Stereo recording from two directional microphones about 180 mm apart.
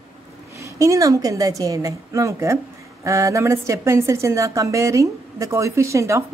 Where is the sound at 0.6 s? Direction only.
15° right (ahead or behind).